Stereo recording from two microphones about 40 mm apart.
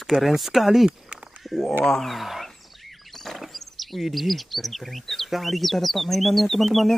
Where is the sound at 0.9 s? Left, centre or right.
Right.